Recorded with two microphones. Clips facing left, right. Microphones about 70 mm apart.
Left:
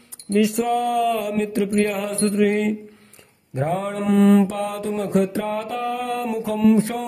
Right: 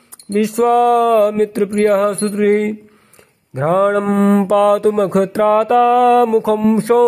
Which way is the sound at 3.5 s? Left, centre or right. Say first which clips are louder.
Right 10 dB; right.